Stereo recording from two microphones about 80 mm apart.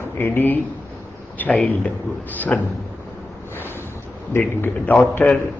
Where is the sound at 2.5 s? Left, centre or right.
Centre.